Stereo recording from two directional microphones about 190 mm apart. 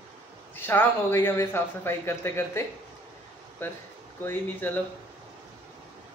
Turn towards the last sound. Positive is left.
turn(degrees=10)  # may be behind; listen again after turning